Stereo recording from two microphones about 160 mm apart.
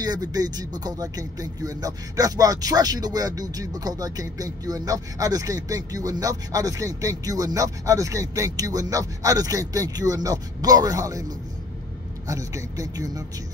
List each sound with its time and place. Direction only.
0.0 s speech: 25° right (ahead or behind)
12.3 s speech: 20° right (ahead or behind)